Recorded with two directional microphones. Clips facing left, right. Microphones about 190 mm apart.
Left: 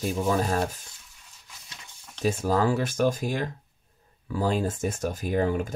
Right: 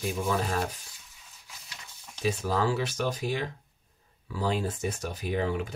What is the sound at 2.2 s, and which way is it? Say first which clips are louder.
Speech: left 4 dB; 45° left (ahead or behind).